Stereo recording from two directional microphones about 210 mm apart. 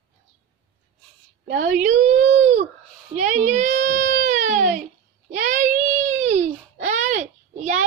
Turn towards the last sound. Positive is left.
turn(degrees=-35)  # may be behind; listen again after turning